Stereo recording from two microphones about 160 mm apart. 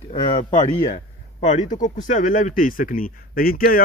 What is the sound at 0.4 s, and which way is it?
Speech, 50° left (ahead or behind).